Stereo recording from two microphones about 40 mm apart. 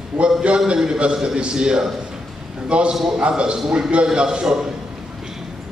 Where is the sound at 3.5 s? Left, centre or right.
Centre.